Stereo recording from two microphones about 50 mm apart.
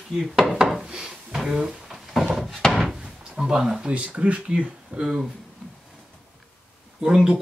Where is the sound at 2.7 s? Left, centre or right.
Centre.